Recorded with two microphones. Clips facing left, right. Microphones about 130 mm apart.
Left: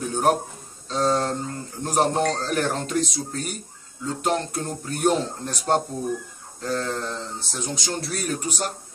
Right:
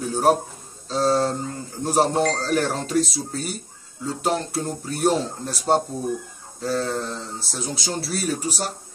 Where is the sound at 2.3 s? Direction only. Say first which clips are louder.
Right 3 dB; 35° right (ahead or behind).